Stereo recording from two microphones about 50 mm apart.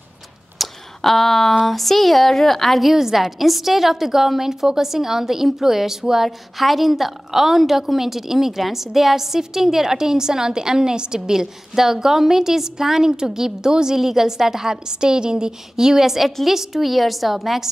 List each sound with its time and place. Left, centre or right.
0.6 s speech: centre